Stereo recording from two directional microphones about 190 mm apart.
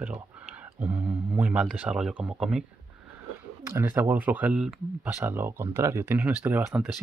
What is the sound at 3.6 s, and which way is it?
Speech, 10° right (ahead or behind).